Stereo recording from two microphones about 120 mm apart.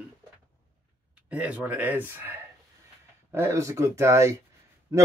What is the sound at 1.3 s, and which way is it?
Speech, 10° right (ahead or behind).